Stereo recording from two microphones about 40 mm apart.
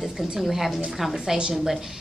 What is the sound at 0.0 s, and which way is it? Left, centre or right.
A woman's voice, centre.